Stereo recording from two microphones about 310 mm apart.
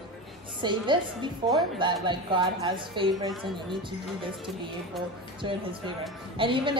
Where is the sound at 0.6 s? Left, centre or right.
Centre.